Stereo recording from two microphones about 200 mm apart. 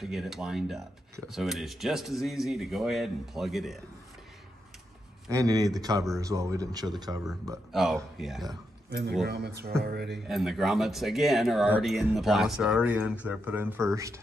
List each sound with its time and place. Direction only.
0.0 s speech: centre (ahead or behind)
5.3 s speech: 20° right (ahead or behind)
7.7 s speech: centre (ahead or behind)
9.3 s speech: 55° right (ahead or behind)
10.2 s speech: centre (ahead or behind)